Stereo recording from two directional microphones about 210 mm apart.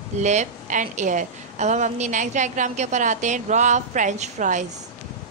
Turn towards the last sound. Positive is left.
turn(degrees=-35)  # may be behind; listen again after turning